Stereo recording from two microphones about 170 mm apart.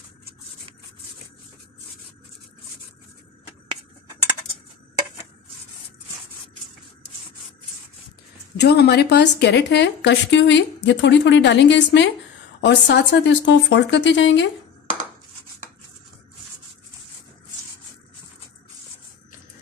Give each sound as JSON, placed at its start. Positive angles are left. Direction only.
{"t": 8.5, "sound": "a woman's voice", "side_deg": 70}